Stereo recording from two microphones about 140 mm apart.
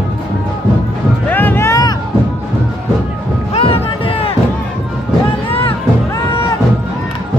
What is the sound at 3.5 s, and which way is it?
Music, 40° left (ahead or behind).